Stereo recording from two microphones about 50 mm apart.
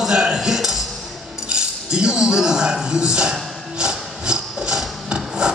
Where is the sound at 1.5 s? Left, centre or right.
Centre.